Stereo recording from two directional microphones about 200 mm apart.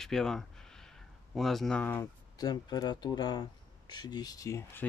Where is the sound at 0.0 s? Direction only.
Centre (ahead or behind).